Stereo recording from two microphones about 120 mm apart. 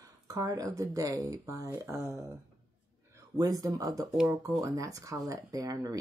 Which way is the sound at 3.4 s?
30° right (ahead or behind).